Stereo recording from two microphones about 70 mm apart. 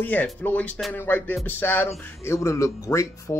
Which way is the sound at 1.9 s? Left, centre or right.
Left.